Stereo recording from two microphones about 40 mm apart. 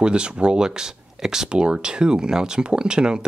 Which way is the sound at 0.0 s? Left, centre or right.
Right.